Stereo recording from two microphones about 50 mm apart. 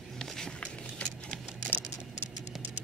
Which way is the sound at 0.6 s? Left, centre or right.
Left.